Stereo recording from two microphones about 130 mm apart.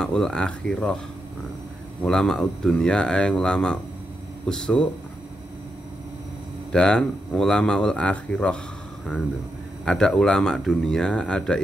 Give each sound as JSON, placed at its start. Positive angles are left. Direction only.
{"t": 0.0, "sound": "speech", "side_deg": 5}
{"t": 2.0, "sound": "speech", "side_deg": 5}
{"t": 6.7, "sound": "speech", "side_deg": 5}
{"t": 9.8, "sound": "speech", "side_deg": 5}